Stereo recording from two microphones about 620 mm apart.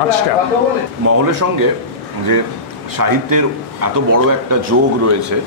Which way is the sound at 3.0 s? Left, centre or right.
Right.